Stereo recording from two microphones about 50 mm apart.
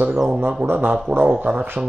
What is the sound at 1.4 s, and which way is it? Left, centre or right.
Speech, right.